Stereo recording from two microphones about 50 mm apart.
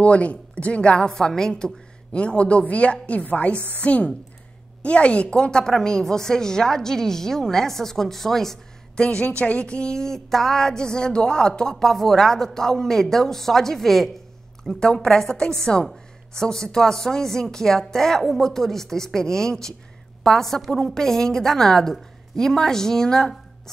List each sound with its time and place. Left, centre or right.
0.0 s a woman's voice: left
2.1 s a woman's voice: left; by 9.0 s centre
9.0 s a woman's voice: left